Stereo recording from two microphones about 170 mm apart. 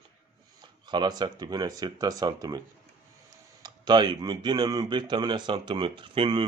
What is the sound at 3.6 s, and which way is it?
Speech, 25° right (ahead or behind).